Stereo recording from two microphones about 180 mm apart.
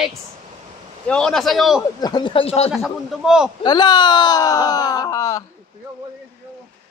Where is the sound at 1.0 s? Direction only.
5° left (ahead or behind).